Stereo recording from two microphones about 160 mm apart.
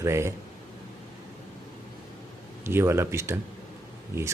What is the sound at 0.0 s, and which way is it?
Speech, 15° right (ahead or behind).